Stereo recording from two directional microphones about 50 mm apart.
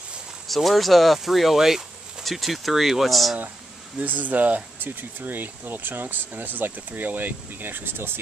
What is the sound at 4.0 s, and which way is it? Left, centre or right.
Speech, right.